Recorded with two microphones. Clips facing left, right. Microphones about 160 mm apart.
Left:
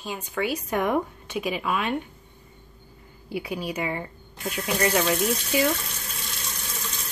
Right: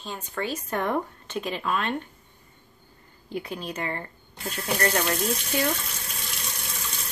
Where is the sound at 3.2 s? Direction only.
10° left (ahead or behind).